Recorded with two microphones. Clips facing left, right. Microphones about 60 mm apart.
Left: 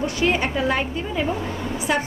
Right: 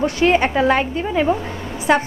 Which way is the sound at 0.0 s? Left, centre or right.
Right.